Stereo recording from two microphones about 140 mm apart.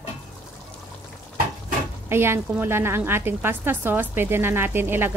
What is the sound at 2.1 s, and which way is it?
A woman's voice, 15° right (ahead or behind).